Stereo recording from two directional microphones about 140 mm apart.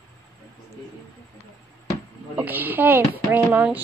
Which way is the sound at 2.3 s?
10° right (ahead or behind).